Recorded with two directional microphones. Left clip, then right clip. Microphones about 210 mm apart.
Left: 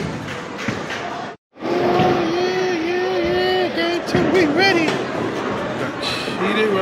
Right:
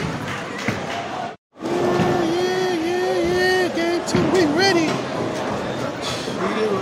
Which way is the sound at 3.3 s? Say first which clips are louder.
Even; 15° right (ahead or behind).